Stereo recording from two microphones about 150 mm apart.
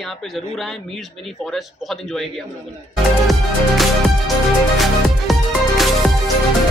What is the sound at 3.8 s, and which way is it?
Music, centre (ahead or behind).